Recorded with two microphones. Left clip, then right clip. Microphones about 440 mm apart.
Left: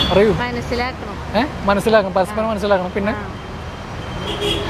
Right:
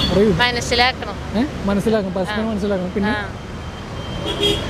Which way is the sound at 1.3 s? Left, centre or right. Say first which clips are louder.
Left 6 dB; left.